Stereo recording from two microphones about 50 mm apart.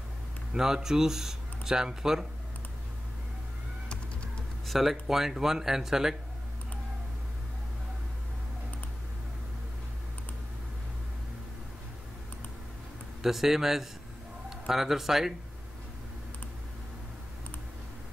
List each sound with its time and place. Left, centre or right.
0.5 s speech: centre
3.9 s a sound: left
4.6 s speech: centre
13.2 s speech: centre